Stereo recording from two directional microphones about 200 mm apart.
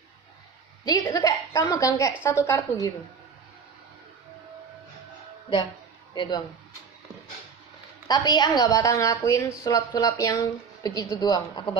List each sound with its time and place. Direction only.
0.8 s a woman's voice: 20° left (ahead or behind)
6.1 s a woman's voice: 20° left (ahead or behind)
8.1 s a woman's voice: 20° left (ahead or behind)